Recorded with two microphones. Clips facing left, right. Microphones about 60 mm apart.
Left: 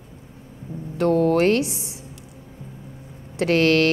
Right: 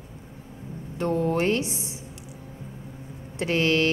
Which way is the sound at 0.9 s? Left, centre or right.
Left.